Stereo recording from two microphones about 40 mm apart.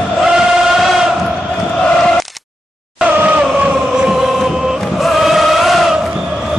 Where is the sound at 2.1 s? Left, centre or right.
Centre.